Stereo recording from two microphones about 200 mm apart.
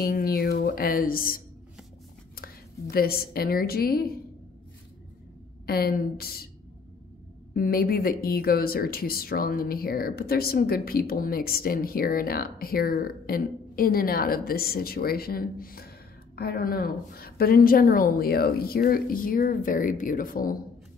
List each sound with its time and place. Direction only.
0.0 s a woman's voice: 45° left (ahead or behind)
5.7 s speech: 50° left (ahead or behind)
7.5 s speech: 45° left (ahead or behind)